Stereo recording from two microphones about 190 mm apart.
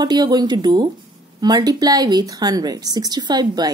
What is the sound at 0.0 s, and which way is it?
A woman's voice, 20° right (ahead or behind).